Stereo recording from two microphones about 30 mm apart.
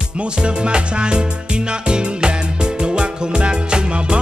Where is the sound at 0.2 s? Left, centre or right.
Right.